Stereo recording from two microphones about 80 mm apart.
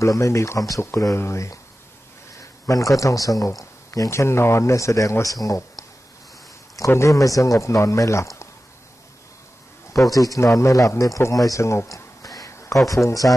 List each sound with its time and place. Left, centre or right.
0.0 s speech: left
2.6 s speech: left
6.9 s speech: left
10.1 s speech: left
12.4 s a sound: left
12.8 s speech: left